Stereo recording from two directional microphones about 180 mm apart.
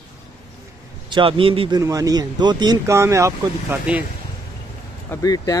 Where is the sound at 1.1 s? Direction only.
30° right (ahead or behind).